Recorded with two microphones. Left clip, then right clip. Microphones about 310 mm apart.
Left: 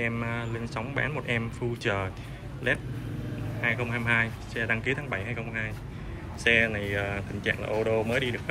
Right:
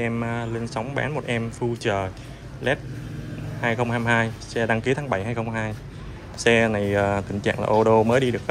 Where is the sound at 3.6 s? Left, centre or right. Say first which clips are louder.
Right 5 dB; centre.